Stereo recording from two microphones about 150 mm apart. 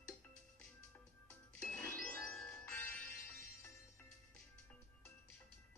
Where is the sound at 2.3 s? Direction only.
5° left (ahead or behind).